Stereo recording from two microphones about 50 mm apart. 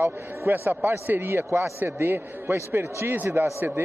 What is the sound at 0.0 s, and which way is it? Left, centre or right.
A man's voice, right.